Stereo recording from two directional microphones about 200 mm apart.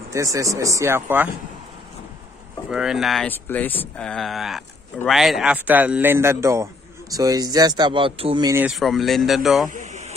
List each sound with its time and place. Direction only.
0.1 s speech: 15° right (ahead or behind)
2.7 s speech: centre (ahead or behind); by 8.5 s 25° right (ahead or behind)
8.5 s speech: 5° right (ahead or behind)
9.8 s a sound: 35° right (ahead or behind)